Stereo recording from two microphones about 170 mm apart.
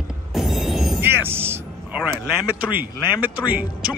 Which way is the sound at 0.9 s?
15° right (ahead or behind).